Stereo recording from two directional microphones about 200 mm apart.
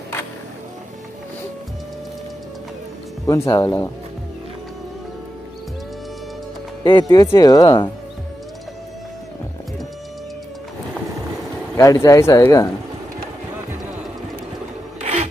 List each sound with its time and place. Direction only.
3.3 s speech: 15° left (ahead or behind)
6.8 s speech: 20° left (ahead or behind)
11.7 s speech: 15° left (ahead or behind)
15.0 s a sound: 35° right (ahead or behind)